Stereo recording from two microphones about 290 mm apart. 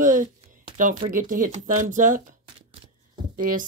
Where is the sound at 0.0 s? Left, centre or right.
Right.